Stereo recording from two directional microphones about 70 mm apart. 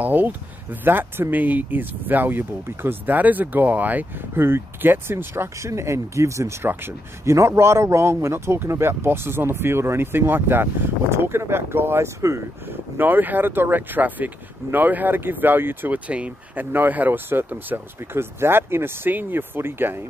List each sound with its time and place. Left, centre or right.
0.0 s speech: right
12.9 s speech: right
16.1 s speech: centre